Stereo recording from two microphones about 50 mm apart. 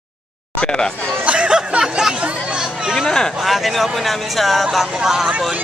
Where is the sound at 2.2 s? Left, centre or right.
Centre.